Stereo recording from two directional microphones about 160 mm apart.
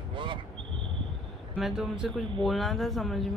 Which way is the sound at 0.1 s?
30° right (ahead or behind).